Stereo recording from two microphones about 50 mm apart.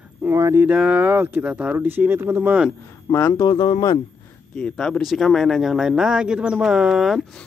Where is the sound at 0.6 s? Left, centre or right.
Right.